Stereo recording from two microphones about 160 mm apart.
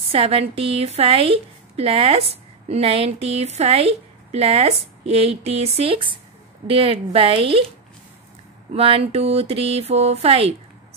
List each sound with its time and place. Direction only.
0.1 s a woman's voice: 35° right (ahead or behind)
8.7 s a woman's voice: 35° right (ahead or behind)